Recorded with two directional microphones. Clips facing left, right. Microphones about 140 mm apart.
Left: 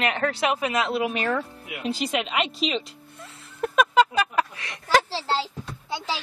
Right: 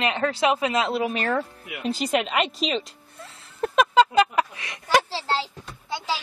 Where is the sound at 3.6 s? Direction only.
25° right (ahead or behind).